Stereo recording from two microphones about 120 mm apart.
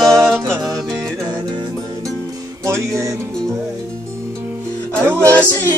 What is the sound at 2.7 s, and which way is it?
Music, 25° right (ahead or behind).